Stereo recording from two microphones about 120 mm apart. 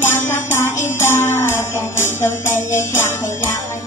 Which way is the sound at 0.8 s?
20° left (ahead or behind).